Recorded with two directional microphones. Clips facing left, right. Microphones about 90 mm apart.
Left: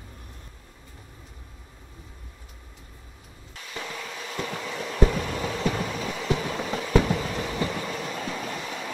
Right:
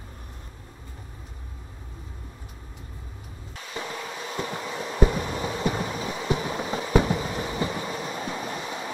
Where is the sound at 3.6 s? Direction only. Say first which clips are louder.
Right 2 dB; 20° right (ahead or behind).